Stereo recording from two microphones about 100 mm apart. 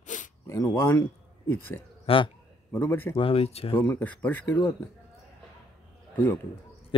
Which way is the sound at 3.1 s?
75° left (ahead or behind).